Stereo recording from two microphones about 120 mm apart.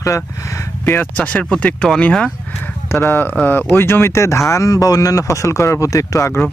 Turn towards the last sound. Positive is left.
turn(degrees=25)  # may be behind; listen again after turning